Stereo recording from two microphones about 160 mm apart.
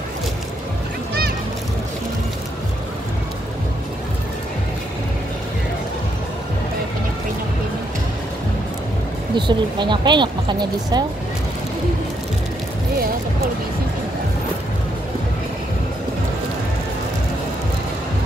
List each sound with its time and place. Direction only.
9.3 s speech: 30° right (ahead or behind)